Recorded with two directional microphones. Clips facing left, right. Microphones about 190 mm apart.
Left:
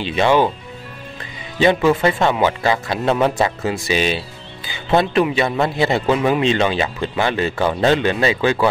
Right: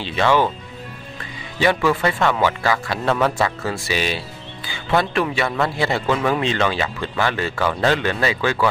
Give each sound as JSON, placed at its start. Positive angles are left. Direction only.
{"t": 0.0, "sound": "speech", "side_deg": 15}
{"t": 1.6, "sound": "a man's voice", "side_deg": 20}